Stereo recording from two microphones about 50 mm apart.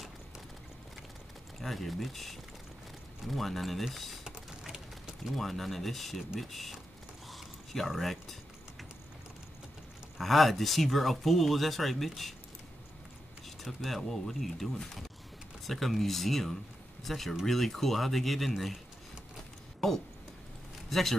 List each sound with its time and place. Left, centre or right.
1.6 s speech: centre
4.2 s typing: centre
5.3 s speech: centre
7.2 s a sound: centre
10.1 s speech: centre
13.6 s speech: centre
20.9 s speech: centre